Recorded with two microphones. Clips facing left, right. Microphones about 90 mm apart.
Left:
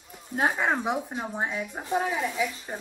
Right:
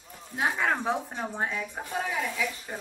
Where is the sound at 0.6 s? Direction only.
15° left (ahead or behind).